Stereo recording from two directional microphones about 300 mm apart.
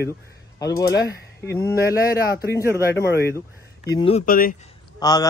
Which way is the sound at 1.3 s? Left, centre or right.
Centre.